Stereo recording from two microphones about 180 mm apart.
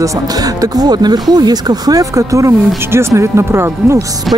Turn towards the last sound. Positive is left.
turn(degrees=0)  # may be behind; listen again after turning